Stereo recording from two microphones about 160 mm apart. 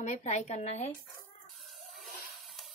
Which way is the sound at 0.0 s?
45° left (ahead or behind).